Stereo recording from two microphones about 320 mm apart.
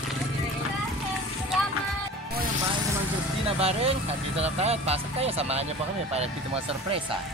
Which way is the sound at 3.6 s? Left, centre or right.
Centre.